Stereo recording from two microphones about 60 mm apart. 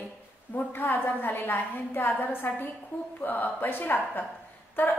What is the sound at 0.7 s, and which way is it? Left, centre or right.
A woman's voice, left.